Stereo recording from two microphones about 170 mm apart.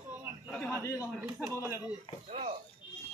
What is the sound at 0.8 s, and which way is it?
Speech, 15° left (ahead or behind).